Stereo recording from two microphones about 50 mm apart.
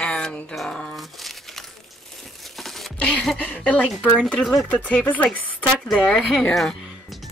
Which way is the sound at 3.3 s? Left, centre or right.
Left.